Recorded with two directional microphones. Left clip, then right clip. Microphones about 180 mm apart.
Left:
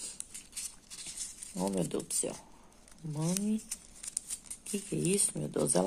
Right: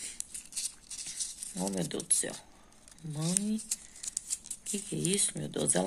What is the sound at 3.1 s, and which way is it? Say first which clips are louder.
Speech: even; 15° right (ahead or behind).